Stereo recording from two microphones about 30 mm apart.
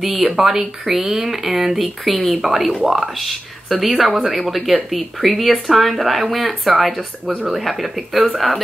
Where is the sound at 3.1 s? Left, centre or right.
Centre.